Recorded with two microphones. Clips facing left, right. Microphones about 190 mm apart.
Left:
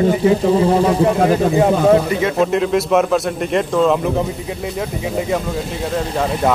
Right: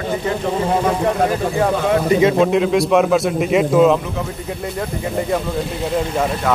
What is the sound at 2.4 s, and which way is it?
Speech, centre (ahead or behind).